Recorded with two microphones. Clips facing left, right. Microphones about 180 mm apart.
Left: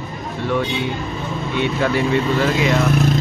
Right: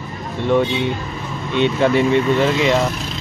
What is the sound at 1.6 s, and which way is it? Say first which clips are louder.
Speech: right 4 dB; 25° right (ahead or behind).